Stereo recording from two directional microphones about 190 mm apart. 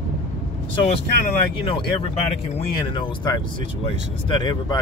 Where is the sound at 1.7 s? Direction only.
25° left (ahead or behind).